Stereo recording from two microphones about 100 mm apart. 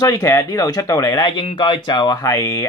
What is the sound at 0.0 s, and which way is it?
Mantra, 35° left (ahead or behind).